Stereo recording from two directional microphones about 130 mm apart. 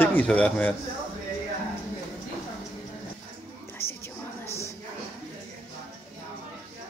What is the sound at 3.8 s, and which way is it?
Music, 20° left (ahead or behind).